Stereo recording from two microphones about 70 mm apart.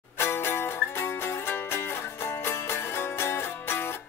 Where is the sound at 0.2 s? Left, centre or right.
Left.